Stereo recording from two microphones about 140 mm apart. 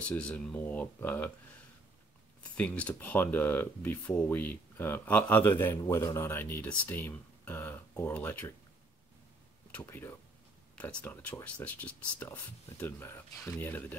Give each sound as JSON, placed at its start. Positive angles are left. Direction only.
{"t": 0.0, "sound": "speech", "side_deg": 10}
{"t": 2.4, "sound": "speech", "side_deg": 10}
{"t": 9.7, "sound": "speech", "side_deg": 15}